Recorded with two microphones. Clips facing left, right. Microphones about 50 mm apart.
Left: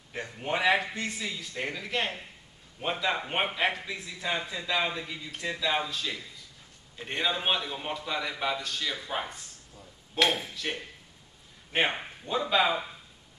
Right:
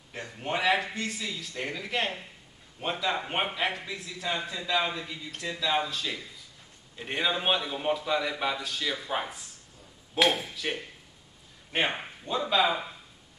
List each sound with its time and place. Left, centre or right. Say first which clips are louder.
0.1 s a man's voice: left 1 dB; centre
3.9 s a man's voice: even; centre
12.3 s a man's voice: even; centre